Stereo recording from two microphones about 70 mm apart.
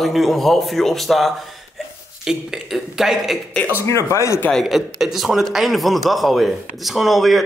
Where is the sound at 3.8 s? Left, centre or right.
Left.